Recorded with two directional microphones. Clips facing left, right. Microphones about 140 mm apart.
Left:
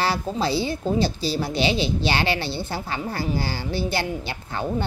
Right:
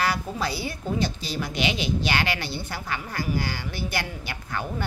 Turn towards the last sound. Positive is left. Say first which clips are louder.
# left 3 dB
turn(degrees=25)  # may be behind; listen again after turning